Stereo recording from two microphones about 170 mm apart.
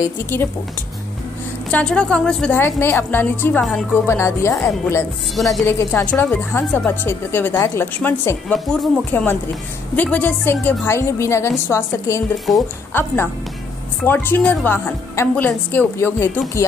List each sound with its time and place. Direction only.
0.0 s a woman's voice: 15° left (ahead or behind)
1.7 s a woman's voice: 5° left (ahead or behind)
4.1 s a woman's voice: 15° left (ahead or behind)
5.3 s speech: centre (ahead or behind)
5.7 s a woman's voice: 15° left (ahead or behind)